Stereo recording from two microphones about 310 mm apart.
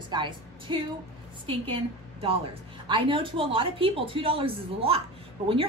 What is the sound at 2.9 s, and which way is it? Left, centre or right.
Speech, centre.